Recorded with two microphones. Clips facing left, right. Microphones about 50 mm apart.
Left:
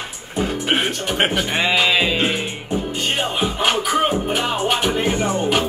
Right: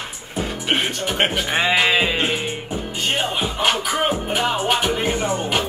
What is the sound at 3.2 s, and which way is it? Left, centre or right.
Music, centre.